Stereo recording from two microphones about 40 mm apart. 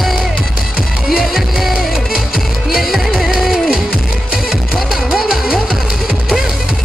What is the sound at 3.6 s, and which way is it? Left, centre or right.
Music, right.